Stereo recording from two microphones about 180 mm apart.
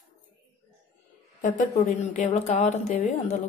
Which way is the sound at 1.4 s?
45° left (ahead or behind).